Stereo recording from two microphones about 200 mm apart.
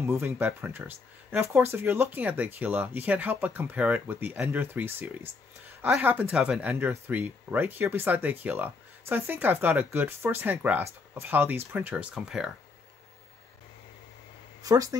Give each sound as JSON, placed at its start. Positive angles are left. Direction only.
{"t": 0.0, "sound": "speech", "side_deg": -10}
{"t": 14.6, "sound": "speech", "side_deg": -15}